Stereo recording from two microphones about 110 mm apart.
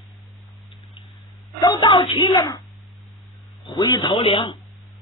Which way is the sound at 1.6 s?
45° left (ahead or behind).